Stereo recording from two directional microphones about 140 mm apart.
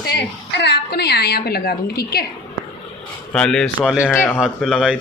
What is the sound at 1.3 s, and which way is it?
Speech, 90° left.